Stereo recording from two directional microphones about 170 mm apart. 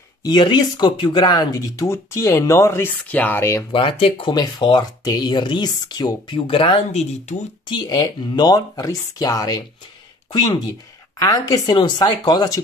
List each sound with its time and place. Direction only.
0.2 s speech: 25° left (ahead or behind)
3.7 s speech: 30° left (ahead or behind)
7.6 s speech: 25° left (ahead or behind)
11.1 s speech: 25° left (ahead or behind)